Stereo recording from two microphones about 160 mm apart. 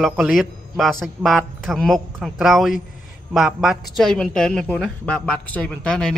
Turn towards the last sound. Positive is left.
turn(degrees=5)  # may be behind; listen again after turning